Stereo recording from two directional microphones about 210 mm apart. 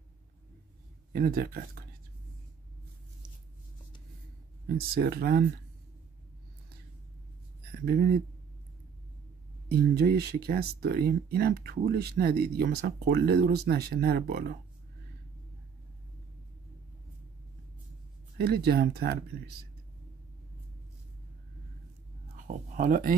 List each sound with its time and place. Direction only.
1.1 s speech: 45° right (ahead or behind)
4.6 s speech: 45° right (ahead or behind)
7.8 s speech: 45° right (ahead or behind)
9.7 s speech: 50° right (ahead or behind)
18.4 s speech: 50° right (ahead or behind)
22.4 s speech: 40° right (ahead or behind)